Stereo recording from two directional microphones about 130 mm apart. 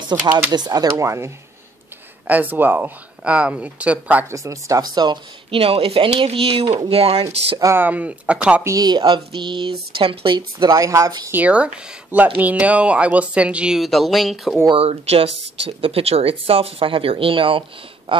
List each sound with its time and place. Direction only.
0.1 s speech: 30° right (ahead or behind); by 4.3 s 10° right (ahead or behind)
4.3 s speech: 25° right (ahead or behind); by 7.5 s 50° right (ahead or behind)
7.7 s speech: 15° right (ahead or behind)
8.6 s speech: 30° right (ahead or behind)
11.3 s speech: 10° right (ahead or behind)
14.7 s speech: 50° right (ahead or behind)